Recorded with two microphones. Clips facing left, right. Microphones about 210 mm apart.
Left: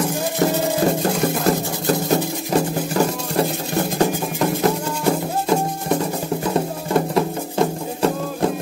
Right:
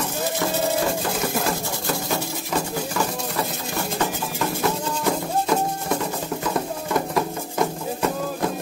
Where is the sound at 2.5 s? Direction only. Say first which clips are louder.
Left 6 dB; 35° left (ahead or behind).